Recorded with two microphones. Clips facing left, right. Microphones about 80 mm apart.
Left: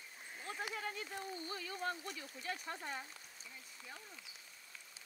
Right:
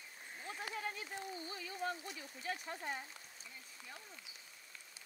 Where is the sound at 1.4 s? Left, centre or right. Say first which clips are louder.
Even; left.